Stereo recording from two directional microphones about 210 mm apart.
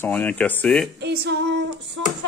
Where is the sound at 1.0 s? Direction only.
50° right (ahead or behind).